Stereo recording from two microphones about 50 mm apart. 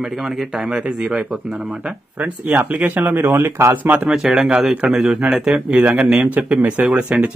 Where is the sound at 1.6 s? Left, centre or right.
Right.